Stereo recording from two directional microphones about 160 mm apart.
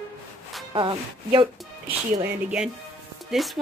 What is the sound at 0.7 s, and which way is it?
Speech, 30° right (ahead or behind).